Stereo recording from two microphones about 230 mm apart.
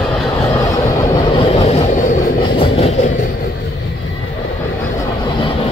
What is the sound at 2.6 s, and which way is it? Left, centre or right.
Train, left.